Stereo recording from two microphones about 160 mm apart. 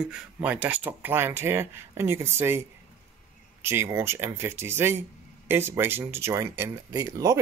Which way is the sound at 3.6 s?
15° right (ahead or behind).